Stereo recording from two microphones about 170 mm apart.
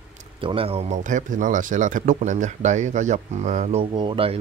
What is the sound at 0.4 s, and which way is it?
Speech, 30° right (ahead or behind).